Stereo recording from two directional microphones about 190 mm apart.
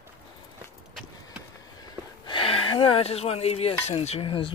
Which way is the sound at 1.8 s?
25° left (ahead or behind).